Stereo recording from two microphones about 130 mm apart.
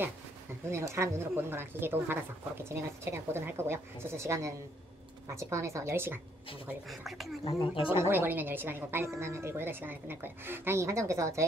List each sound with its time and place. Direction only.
0.7 s speech: 20° right (ahead or behind)
6.9 s speech: centre (ahead or behind)
7.6 s speech: 45° left (ahead or behind)
8.0 s a woman's voice: 15° right (ahead or behind)